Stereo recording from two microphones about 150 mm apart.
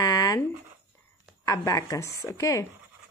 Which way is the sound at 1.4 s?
20° left (ahead or behind).